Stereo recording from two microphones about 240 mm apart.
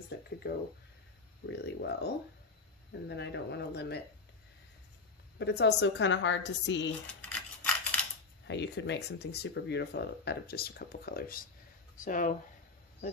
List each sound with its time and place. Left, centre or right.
1.4 s speech: left
5.4 s speech: left
7.2 s scissors: centre
8.5 s speech: left